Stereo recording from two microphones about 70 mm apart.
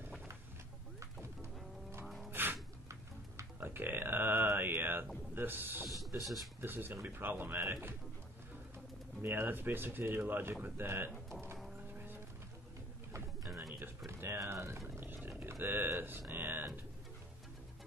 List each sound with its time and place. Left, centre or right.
2.0 s music: centre
2.3 s music: right
3.5 s a sound: right
5.3 s speech: right
5.9 s speech: centre
6.6 s speech: right
9.2 s speech: right
13.7 s pigeon: right
15.2 s a sound: right